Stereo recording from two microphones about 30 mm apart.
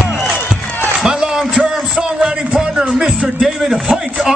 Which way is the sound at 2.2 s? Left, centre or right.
Right.